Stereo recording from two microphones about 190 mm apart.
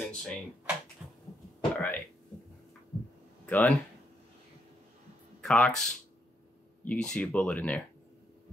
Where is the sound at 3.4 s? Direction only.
10° left (ahead or behind).